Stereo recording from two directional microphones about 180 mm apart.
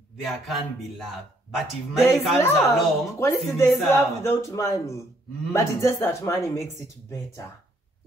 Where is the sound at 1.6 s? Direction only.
Centre (ahead or behind).